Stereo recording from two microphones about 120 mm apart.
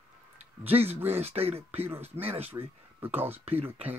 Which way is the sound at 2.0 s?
20° right (ahead or behind).